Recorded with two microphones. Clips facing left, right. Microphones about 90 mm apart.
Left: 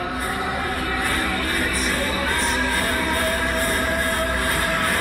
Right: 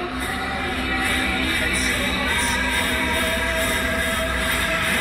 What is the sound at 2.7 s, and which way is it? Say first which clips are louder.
Train: left 1 dB; 45° left (ahead or behind).